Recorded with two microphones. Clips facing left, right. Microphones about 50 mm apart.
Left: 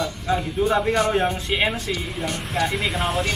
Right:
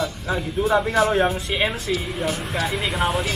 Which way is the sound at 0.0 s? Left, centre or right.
Centre.